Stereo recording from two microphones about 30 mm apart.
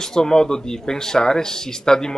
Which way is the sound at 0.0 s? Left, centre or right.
Centre.